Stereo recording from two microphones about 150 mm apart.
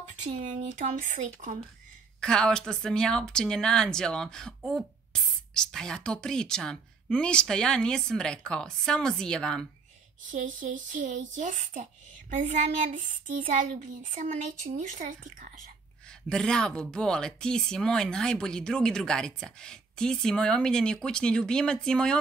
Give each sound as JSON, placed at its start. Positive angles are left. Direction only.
{"t": 0.4, "sound": "speech", "side_deg": -55}
{"t": 2.1, "sound": "speech", "side_deg": 5}
{"t": 10.3, "sound": "speech", "side_deg": -60}
{"t": 16.1, "sound": "speech", "side_deg": 5}